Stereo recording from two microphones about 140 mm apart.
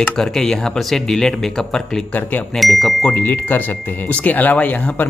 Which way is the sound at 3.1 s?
15° left (ahead or behind).